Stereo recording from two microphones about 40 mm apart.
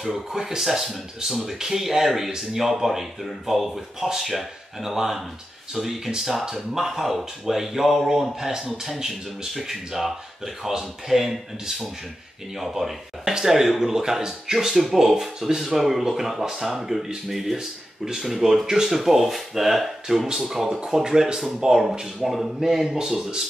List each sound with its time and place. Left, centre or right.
0.1 s speech: centre